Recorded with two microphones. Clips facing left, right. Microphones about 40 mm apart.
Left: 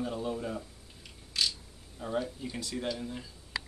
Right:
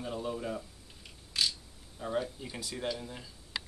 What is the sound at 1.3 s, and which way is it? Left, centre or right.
Mechanisms, centre.